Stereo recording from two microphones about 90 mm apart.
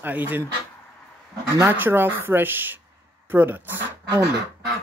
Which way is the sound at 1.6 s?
25° right (ahead or behind).